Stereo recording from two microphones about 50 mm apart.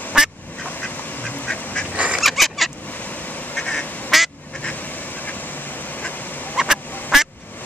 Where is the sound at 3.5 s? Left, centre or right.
Left.